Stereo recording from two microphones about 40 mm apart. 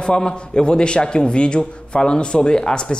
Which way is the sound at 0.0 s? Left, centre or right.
Left.